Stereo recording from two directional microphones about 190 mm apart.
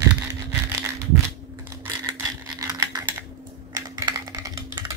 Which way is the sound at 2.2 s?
20° right (ahead or behind).